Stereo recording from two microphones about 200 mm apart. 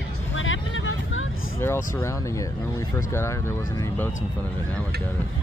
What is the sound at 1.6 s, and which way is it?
Speech, 15° left (ahead or behind).